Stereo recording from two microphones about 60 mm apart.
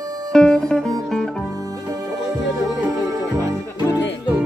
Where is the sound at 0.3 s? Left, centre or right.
Centre.